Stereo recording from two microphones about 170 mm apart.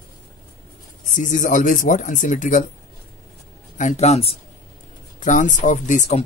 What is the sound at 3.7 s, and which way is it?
Speech, 45° left (ahead or behind).